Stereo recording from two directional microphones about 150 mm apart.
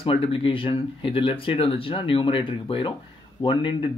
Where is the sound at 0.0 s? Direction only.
40° left (ahead or behind).